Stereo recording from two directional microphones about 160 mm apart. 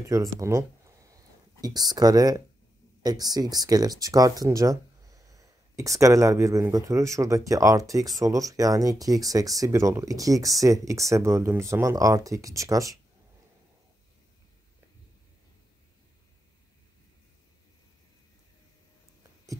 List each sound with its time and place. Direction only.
0.0 s speech: 20° right (ahead or behind)